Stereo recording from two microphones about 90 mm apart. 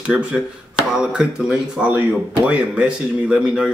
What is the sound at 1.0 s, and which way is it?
Speech, 10° right (ahead or behind).